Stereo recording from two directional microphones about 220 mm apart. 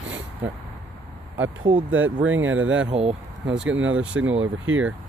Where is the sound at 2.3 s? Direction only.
65° right (ahead or behind).